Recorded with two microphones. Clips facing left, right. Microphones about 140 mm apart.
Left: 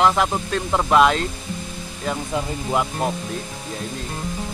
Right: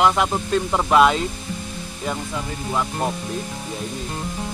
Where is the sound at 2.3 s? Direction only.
20° left (ahead or behind).